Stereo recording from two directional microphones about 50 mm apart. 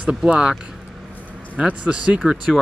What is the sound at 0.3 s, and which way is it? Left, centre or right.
Speech, centre.